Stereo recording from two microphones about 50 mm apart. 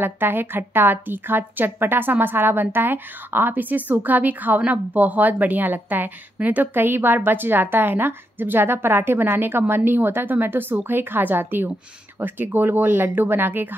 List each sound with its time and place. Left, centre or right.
0.0 s a woman's voice: right